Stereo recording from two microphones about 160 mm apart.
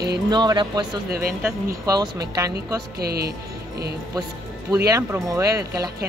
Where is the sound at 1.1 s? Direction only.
65° right (ahead or behind).